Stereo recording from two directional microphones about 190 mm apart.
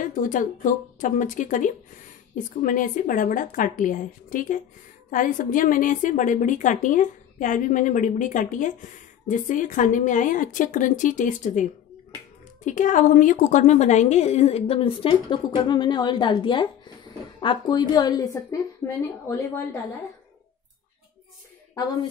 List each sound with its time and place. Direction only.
0.0 s a woman's voice: 45° left (ahead or behind)
12.6 s a woman's voice: 40° left (ahead or behind); by 19.8 s 15° left (ahead or behind)